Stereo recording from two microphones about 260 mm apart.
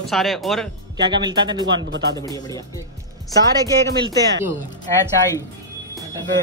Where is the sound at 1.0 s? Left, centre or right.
Centre.